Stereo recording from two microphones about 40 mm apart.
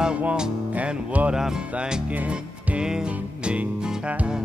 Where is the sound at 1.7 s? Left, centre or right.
Right.